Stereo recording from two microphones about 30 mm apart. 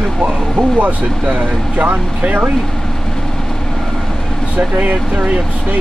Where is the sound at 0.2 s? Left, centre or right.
Right.